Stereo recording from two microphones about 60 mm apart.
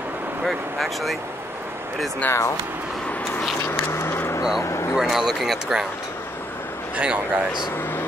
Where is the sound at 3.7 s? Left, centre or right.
Left.